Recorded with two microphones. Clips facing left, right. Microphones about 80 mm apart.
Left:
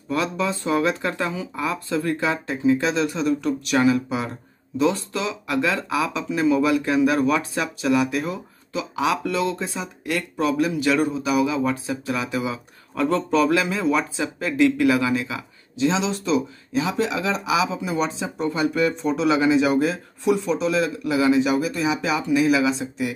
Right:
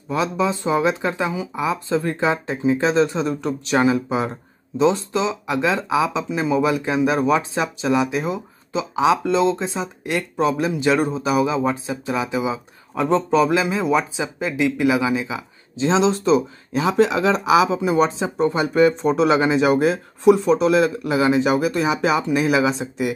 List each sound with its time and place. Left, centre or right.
0.1 s speech: centre
15.8 s speech: right